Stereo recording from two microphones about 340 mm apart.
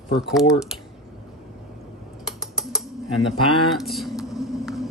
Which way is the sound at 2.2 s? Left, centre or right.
Centre.